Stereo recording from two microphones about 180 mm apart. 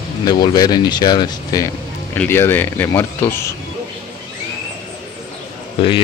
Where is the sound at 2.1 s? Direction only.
10° left (ahead or behind).